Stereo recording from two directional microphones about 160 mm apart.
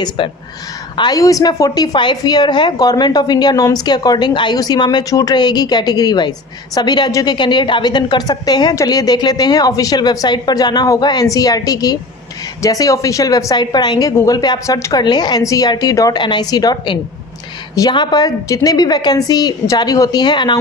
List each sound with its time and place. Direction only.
0.9 s a woman's voice: 25° left (ahead or behind)